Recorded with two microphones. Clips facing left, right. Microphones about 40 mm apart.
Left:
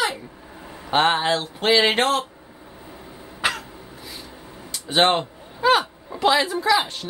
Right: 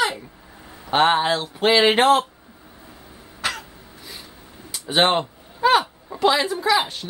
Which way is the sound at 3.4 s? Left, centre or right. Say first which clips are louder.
Left 3 dB; centre.